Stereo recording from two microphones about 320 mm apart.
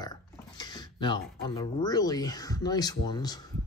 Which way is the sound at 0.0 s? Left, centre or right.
Centre.